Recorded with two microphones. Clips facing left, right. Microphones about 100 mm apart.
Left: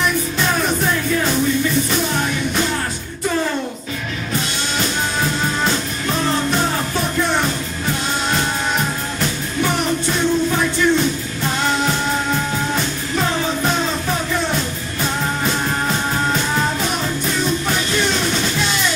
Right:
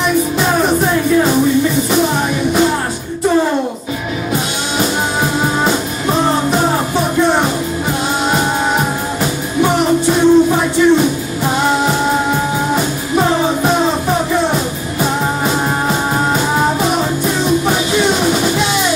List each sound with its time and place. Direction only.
0.4 s music: 25° right (ahead or behind)
4.3 s music: 15° right (ahead or behind)